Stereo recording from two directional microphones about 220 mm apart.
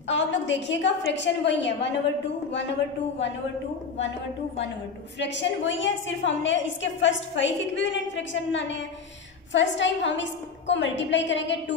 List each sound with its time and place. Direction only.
0.1 s a woman's voice: 55° left (ahead or behind)
5.2 s a woman's voice: 55° left (ahead or behind)